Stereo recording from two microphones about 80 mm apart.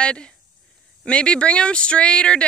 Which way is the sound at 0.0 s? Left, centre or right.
Centre.